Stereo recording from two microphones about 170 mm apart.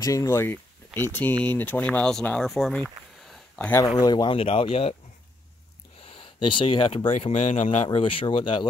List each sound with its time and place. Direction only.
0.0 s speech: 20° left (ahead or behind); by 2.8 s centre (ahead or behind)
3.3 s a sound: 10° left (ahead or behind)
4.0 s speech: 25° left (ahead or behind)
6.0 s speech: 30° left (ahead or behind)
8.0 s speech: 30° left (ahead or behind)